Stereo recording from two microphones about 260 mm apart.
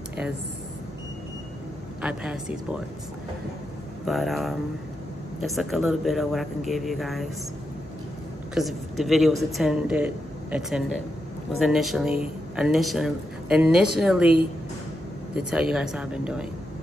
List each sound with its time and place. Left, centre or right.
2.0 s speech: centre
4.0 s speech: centre
8.5 s speech: centre
15.3 s speech: centre